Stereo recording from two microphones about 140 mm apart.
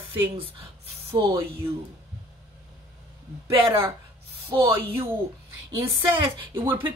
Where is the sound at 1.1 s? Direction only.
20° right (ahead or behind).